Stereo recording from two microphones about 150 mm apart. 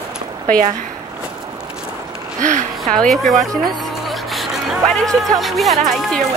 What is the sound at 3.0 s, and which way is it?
Speech, centre (ahead or behind).